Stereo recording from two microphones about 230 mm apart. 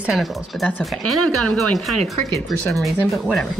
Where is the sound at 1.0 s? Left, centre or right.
Right.